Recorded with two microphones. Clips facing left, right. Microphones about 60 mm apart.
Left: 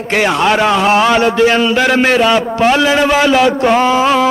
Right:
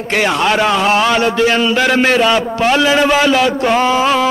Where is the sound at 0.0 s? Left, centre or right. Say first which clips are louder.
Left 2 dB; centre.